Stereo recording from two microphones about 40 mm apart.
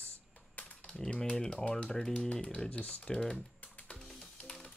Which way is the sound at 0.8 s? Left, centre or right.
Centre.